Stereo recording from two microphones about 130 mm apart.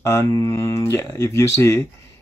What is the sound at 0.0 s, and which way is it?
Speech, 20° left (ahead or behind).